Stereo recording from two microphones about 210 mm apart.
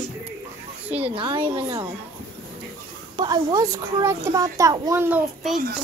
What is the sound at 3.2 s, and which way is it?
A child's voice, 20° right (ahead or behind).